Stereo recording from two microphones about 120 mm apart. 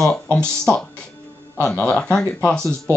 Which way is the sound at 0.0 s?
10° left (ahead or behind).